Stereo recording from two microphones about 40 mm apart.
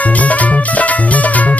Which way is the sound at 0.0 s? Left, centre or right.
Left.